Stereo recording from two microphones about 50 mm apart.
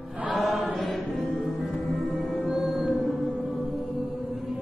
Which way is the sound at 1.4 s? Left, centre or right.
Centre.